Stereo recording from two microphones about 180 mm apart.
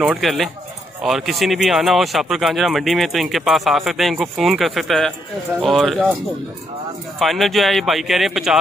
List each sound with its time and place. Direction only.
0.0 s speech: 5° right (ahead or behind)
7.2 s speech: centre (ahead or behind)